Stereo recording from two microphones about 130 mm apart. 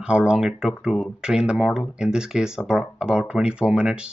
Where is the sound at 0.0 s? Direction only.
5° right (ahead or behind).